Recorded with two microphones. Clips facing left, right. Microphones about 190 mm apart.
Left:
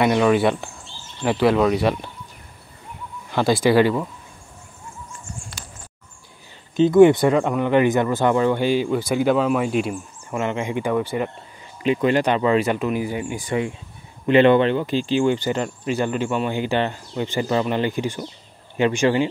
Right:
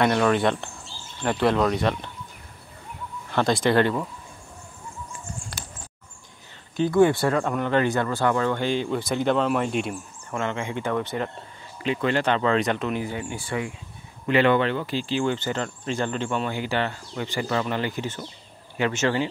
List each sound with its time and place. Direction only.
0.0 s speech: 5° left (ahead or behind)
3.3 s speech: 5° left (ahead or behind)
6.8 s speech: 20° left (ahead or behind); by 10.4 s 5° left (ahead or behind)
10.4 s speech: 15° left (ahead or behind)